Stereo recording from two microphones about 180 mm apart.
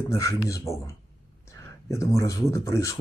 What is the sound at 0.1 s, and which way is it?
Speech, 20° left (ahead or behind).